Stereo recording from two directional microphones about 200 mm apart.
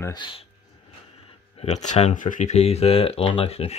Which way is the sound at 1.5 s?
35° left (ahead or behind).